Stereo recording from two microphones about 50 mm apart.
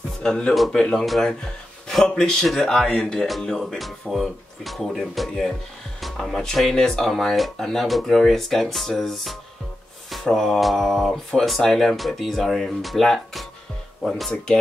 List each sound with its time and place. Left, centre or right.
0.2 s speech: centre
0.9 s speech: centre